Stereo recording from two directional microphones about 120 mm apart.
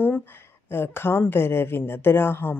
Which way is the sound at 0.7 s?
20° left (ahead or behind).